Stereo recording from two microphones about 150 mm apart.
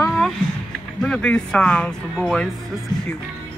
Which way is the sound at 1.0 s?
5° left (ahead or behind).